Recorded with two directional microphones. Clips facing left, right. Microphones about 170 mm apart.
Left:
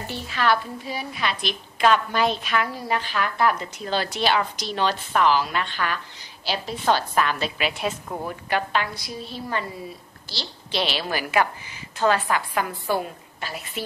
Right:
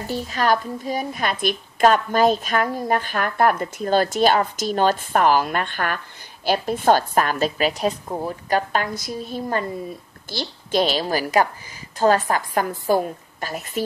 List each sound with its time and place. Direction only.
0.0 s a woman's voice: 40° right (ahead or behind)